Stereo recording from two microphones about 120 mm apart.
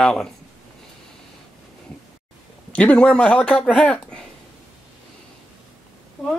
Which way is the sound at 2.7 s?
10° left (ahead or behind).